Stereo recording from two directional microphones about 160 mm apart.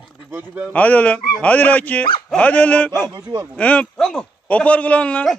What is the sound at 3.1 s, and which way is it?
Speech, 25° right (ahead or behind).